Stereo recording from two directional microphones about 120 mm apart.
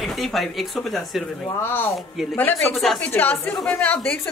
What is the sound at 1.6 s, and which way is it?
Speech, 20° left (ahead or behind).